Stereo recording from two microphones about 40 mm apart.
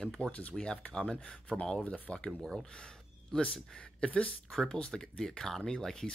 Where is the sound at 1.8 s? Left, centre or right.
Left.